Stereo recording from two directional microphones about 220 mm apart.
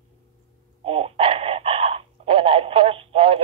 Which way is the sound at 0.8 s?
25° right (ahead or behind).